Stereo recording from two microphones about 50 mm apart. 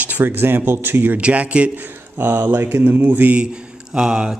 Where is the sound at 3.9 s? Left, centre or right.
Centre.